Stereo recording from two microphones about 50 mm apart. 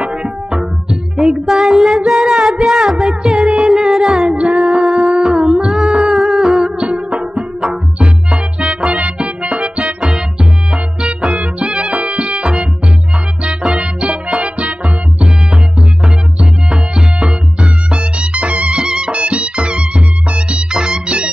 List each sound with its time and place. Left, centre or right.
0.0 s music: centre
4.6 s music: centre
6.8 s music: right
8.5 s music: right